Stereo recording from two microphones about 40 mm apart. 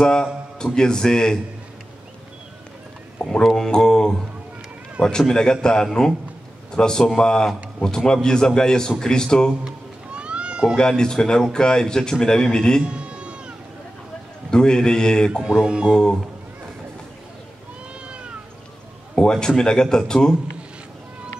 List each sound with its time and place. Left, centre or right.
0.0 s a man's voice: centre
3.2 s speech: centre
5.0 s speech: right
5.3 s a man's voice: centre
10.1 s children playing: right
10.8 s a man's voice: centre
12.8 s a sound: right
14.5 s speech: centre
15.4 s speech: right
15.9 s a man's voice: centre
18.0 s cat: right
19.1 s speech: centre